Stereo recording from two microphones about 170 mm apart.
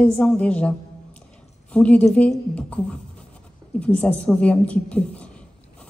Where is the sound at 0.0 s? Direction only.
5° left (ahead or behind).